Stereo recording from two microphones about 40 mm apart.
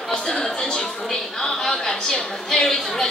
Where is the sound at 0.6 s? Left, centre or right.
Centre.